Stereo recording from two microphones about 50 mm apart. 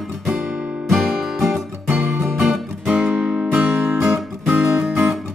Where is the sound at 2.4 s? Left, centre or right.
Centre.